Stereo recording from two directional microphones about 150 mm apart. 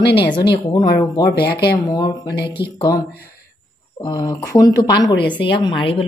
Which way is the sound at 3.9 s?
30° left (ahead or behind).